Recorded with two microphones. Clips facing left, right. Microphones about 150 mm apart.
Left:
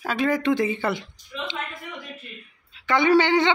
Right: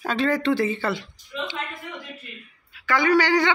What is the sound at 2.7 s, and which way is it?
Speech, 20° left (ahead or behind).